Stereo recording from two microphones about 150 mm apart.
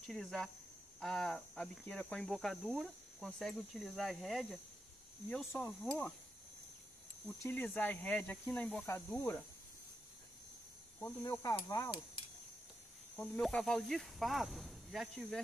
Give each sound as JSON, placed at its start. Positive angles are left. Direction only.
{"t": 0.0, "sound": "speech", "side_deg": 5}
{"t": 5.3, "sound": "speech", "side_deg": 15}
{"t": 7.2, "sound": "speech", "side_deg": 10}
{"t": 11.2, "sound": "speech", "side_deg": 20}
{"t": 13.1, "sound": "speech", "side_deg": 5}